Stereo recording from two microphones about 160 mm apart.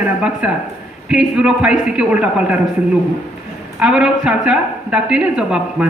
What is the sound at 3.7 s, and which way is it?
A man's voice, 5° right (ahead or behind).